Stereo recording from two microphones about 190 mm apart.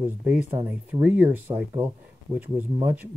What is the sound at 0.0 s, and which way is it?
Speech, 10° right (ahead or behind).